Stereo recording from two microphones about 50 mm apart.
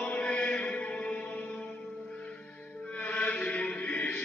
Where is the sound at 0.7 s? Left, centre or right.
Left.